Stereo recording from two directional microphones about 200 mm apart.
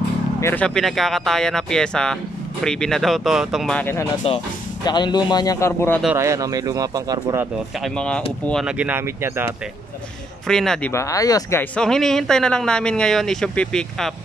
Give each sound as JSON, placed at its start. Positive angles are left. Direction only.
{"t": 0.4, "sound": "speech", "side_deg": 10}
{"t": 6.0, "sound": "speech", "side_deg": -15}
{"t": 7.8, "sound": "speech", "side_deg": 5}
{"t": 10.4, "sound": "speech", "side_deg": 0}
{"t": 10.9, "sound": "speech", "side_deg": 15}
{"t": 11.7, "sound": "speech", "side_deg": 5}